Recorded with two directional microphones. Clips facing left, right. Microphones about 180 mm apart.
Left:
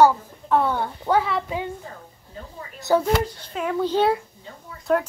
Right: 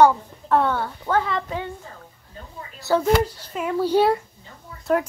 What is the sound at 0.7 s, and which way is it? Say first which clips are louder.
Speech: left 1 dB; 15° left (ahead or behind).